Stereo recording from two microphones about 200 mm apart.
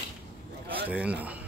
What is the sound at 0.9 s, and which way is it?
Speech, 5° right (ahead or behind).